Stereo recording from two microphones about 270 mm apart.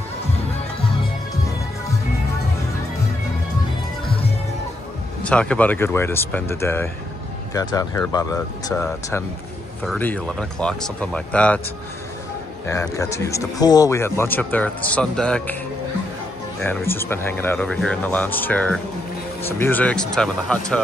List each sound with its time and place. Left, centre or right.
5.2 s speech: centre
9.8 s speech: centre
12.6 s speech: centre
16.6 s speech: centre